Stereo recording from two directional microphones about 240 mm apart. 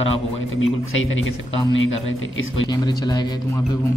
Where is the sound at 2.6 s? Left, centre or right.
Centre.